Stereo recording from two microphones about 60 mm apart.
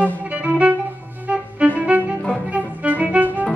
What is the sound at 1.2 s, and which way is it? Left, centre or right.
Music, right.